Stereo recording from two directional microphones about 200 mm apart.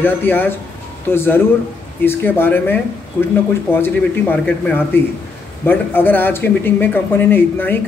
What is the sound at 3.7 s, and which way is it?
Speech, 10° left (ahead or behind).